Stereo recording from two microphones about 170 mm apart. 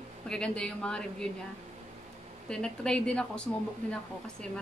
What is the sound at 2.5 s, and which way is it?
Speech, 5° left (ahead or behind).